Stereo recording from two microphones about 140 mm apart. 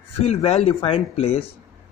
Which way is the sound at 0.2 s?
50° left (ahead or behind).